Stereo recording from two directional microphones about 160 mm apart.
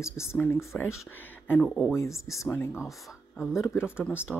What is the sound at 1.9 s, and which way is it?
Speech, 20° left (ahead or behind).